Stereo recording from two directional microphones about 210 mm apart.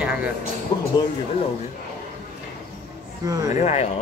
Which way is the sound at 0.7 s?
20° left (ahead or behind).